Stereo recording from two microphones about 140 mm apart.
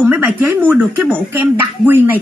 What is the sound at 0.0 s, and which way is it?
A woman's voice, 15° right (ahead or behind).